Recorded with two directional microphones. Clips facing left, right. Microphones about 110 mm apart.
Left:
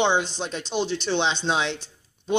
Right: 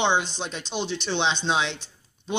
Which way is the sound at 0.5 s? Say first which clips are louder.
Left 4 dB; 5° left (ahead or behind).